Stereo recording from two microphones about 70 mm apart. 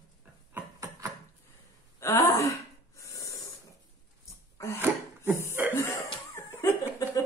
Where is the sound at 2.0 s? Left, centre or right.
Left.